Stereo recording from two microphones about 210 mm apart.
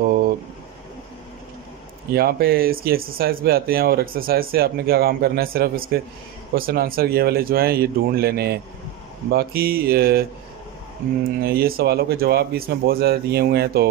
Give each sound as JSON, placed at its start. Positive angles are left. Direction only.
{"t": 0.0, "sound": "a sound", "side_deg": -45}
{"t": 2.1, "sound": "speech", "side_deg": -45}
{"t": 11.2, "sound": "speech", "side_deg": -45}